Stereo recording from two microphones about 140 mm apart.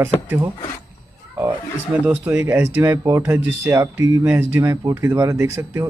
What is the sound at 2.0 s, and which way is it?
Speech, 10° right (ahead or behind).